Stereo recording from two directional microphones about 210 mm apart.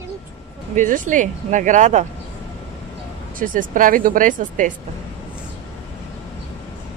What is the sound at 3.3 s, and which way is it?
Speech, 40° right (ahead or behind).